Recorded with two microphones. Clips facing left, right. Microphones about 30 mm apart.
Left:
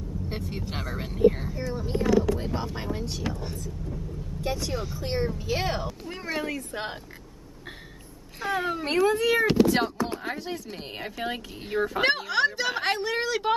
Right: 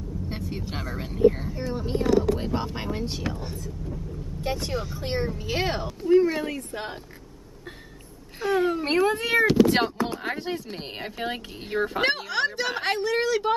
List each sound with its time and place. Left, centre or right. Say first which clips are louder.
0.3 s speech: right 1 dB; centre
1.5 s speech: right 2 dB; right
4.4 s speech: right 1 dB; right
6.0 s speech: right 15 dB; centre
8.4 s speech: right 4 dB; centre
8.8 s speech: left 3 dB; centre
9.1 s speech: left 1 dB; right
10.2 s speech: right 3 dB; right; by 13.6 s centre